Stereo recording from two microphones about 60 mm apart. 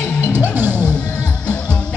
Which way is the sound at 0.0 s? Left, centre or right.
Left.